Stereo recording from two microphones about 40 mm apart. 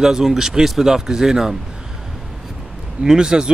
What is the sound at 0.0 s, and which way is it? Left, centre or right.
Speech, centre.